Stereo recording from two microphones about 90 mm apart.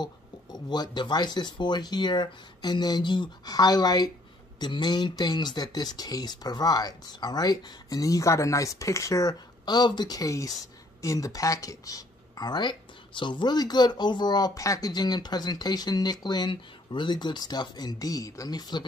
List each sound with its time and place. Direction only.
0.0 s speech: 50° left (ahead or behind)